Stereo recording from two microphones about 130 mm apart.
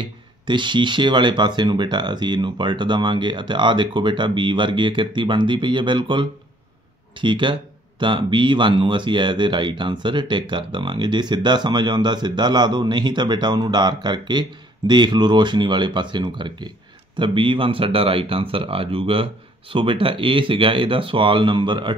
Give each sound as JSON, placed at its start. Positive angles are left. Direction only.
{"t": 0.0, "sound": "speech", "side_deg": -35}